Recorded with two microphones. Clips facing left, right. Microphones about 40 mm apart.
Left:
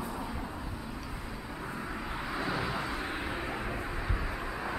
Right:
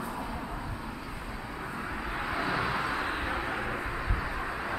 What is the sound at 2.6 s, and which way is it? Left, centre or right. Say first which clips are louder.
Vehicle: right 4 dB; right.